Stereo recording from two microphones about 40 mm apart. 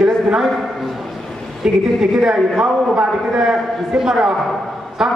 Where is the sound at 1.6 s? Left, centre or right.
Centre.